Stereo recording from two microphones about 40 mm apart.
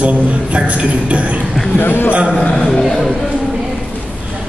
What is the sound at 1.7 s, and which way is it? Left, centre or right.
Speech, left.